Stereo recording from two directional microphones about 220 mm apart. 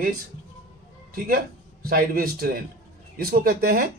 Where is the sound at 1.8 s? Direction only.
40° right (ahead or behind).